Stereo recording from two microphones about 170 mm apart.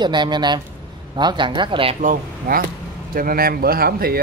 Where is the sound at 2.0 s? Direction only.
55° right (ahead or behind).